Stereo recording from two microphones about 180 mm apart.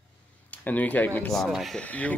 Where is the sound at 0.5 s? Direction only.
10° left (ahead or behind).